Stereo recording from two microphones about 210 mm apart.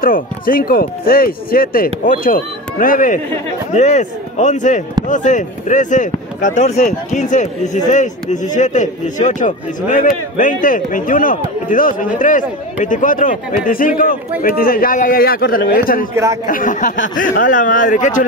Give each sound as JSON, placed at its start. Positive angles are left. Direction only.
{"t": 0.0, "sound": "a man's voice", "side_deg": 40}